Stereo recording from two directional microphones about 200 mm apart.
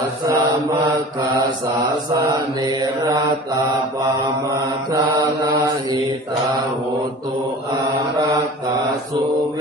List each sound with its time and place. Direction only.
0.3 s mantra: 20° right (ahead or behind)
2.1 s mantra: 20° right (ahead or behind)
4.6 s mantra: 20° right (ahead or behind)